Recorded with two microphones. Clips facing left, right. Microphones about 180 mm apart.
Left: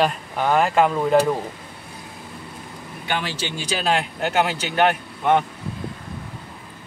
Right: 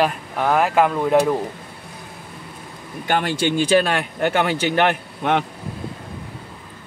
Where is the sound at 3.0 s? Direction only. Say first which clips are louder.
Right 7 dB; 50° right (ahead or behind).